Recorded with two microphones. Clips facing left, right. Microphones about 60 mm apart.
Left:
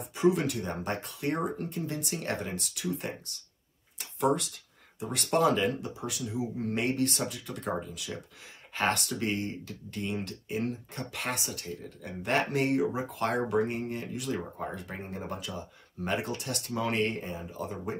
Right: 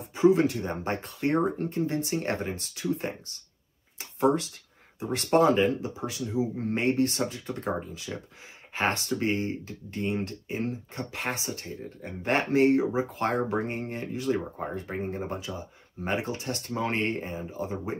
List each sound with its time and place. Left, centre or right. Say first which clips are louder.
0.1 s speech: right 5 dB; right
9.2 s speech: right 4 dB; right